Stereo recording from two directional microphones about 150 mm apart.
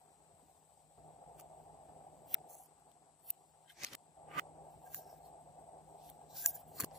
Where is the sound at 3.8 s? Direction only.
Centre (ahead or behind).